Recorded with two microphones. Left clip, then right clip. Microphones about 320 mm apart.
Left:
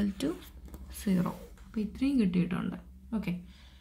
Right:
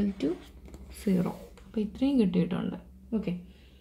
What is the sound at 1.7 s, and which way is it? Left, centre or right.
A woman's voice, centre.